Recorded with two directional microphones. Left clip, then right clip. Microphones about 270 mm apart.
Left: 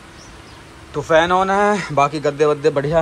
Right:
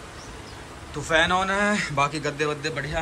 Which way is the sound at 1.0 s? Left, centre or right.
Centre.